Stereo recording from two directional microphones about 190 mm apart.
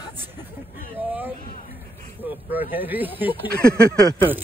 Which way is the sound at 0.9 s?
10° right (ahead or behind).